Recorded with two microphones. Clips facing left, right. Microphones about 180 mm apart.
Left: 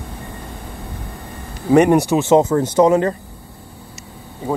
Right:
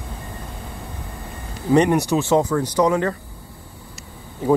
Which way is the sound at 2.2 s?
20° left (ahead or behind).